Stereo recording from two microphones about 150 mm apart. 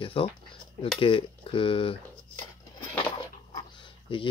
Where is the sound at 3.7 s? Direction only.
35° left (ahead or behind).